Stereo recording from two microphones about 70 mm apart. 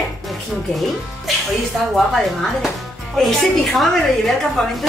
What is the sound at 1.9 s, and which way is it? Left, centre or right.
A woman's voice, centre.